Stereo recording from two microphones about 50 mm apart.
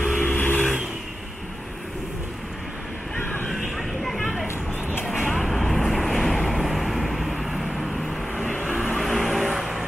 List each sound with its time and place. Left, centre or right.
0.0 s vehicle: left
3.5 s vehicle: centre
8.5 s vehicle: left
9.0 s vehicle: centre